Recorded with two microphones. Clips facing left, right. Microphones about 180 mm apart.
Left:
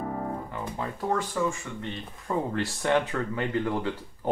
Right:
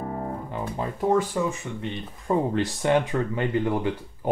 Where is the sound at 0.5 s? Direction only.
20° right (ahead or behind).